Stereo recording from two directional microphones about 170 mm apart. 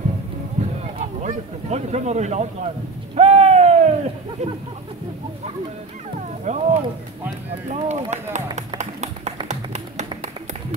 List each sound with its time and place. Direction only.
0.6 s a sound: 45° right (ahead or behind)
1.2 s speech: 40° right (ahead or behind)
3.2 s a sound: 40° right (ahead or behind)
6.1 s dog: 45° right (ahead or behind)
7.7 s speech: 40° right (ahead or behind)
8.5 s clapping: 40° right (ahead or behind)
9.5 s music: 45° right (ahead or behind)